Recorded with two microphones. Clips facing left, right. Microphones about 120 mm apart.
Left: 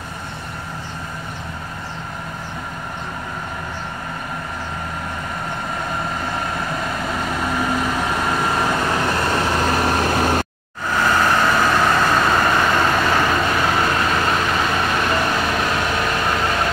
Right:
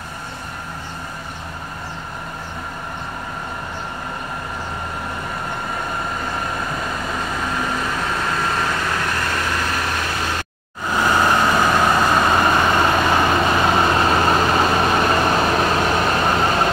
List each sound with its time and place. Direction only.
7.3 s vehicle: 5° left (ahead or behind); by 10.4 s 45° left (ahead or behind)
10.9 s vehicle: 15° right (ahead or behind)